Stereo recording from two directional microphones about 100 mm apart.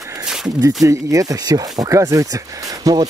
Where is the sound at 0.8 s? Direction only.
35° right (ahead or behind).